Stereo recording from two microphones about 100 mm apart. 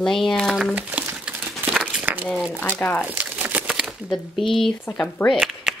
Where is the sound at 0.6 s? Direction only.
15° right (ahead or behind).